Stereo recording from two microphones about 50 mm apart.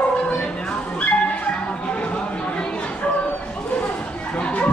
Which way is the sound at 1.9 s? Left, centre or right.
Left.